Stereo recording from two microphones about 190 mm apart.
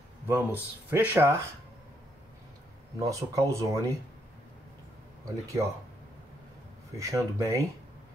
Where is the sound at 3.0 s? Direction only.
15° right (ahead or behind).